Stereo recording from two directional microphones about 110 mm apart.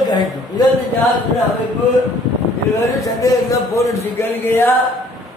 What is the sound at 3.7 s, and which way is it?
Speech, 25° left (ahead or behind).